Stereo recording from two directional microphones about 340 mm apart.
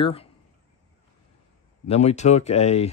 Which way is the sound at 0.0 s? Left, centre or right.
Centre.